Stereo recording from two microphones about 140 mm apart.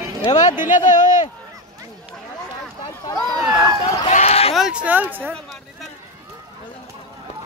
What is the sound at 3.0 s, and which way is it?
Speech, 30° left (ahead or behind).